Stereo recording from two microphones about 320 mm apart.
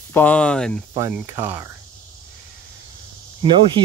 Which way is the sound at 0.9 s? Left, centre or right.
Centre.